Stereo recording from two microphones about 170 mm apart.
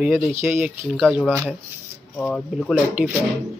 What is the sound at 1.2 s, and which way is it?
Speech, 10° left (ahead or behind).